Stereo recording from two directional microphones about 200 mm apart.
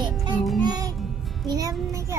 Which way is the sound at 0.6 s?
20° right (ahead or behind).